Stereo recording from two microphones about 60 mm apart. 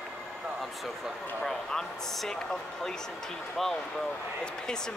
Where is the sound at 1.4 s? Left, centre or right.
Centre.